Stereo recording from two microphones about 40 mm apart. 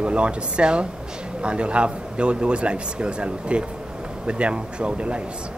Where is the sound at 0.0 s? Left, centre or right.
Right.